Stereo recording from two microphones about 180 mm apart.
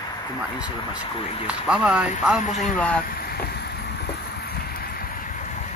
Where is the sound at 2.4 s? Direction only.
40° left (ahead or behind).